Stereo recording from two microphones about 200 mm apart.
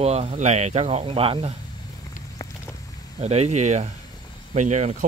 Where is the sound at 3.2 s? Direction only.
30° right (ahead or behind).